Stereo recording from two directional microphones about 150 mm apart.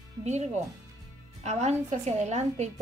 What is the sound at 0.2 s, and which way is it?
A woman's voice, 50° right (ahead or behind).